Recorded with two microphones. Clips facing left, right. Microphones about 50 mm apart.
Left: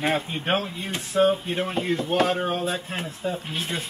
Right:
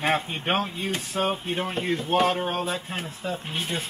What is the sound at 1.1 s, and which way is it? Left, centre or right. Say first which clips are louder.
Speech: left 7 dB; centre.